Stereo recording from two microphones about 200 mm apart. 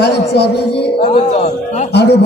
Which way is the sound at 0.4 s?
55° left (ahead or behind).